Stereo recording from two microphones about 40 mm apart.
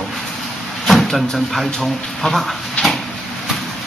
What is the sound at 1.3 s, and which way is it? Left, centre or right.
Speech, centre.